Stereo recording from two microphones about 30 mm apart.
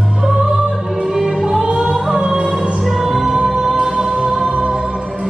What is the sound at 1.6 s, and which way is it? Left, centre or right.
Music, right.